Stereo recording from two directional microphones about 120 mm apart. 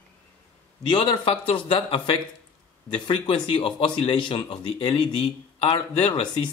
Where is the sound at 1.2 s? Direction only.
50° left (ahead or behind).